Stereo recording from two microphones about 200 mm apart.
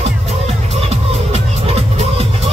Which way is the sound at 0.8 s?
30° right (ahead or behind).